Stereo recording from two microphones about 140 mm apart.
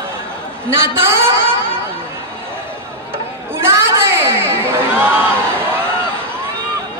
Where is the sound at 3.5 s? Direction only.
20° right (ahead or behind).